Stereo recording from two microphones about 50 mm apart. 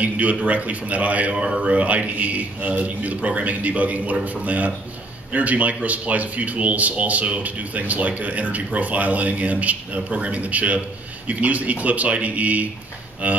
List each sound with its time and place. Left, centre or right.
0.0 s speech: right